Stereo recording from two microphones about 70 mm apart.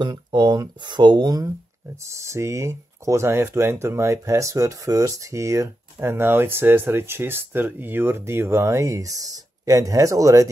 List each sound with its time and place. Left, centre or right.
0.0 s speech: right
2.0 s speech: right